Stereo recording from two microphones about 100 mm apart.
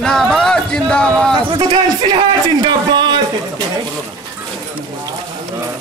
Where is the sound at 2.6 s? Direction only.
50° right (ahead or behind).